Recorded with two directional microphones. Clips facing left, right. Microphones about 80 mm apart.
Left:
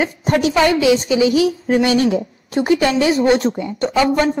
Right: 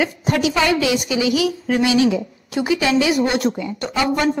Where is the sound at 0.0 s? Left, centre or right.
Left.